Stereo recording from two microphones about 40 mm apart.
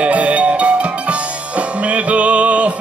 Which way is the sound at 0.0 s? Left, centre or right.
Right.